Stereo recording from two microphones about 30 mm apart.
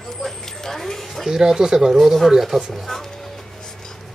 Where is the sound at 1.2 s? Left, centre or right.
Centre.